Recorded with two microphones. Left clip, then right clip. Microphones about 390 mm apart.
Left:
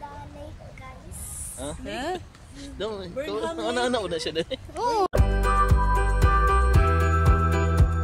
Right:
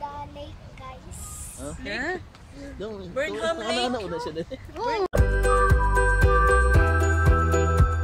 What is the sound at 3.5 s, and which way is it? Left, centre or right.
Speech, left.